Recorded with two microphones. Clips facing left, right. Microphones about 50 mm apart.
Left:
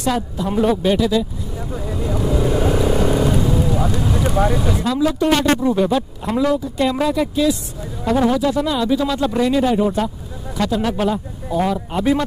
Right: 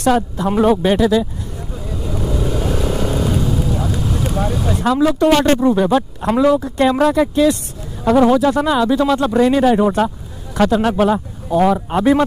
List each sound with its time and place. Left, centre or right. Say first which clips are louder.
0.0 s speech: right 5 dB; right
1.8 s vehicle: left 2 dB; left
2.1 s vehicle: left 2 dB; centre
4.1 s speech: left 4 dB; centre
5.2 s speech: right 3 dB; right
7.0 s speech: right 4 dB; right